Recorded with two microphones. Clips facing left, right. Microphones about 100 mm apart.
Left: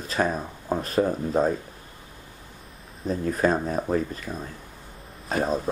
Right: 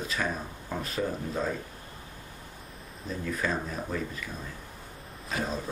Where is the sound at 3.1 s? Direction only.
45° left (ahead or behind).